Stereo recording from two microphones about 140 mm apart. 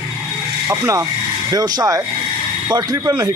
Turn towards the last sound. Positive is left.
turn(degrees=-25)  # may be behind; listen again after turning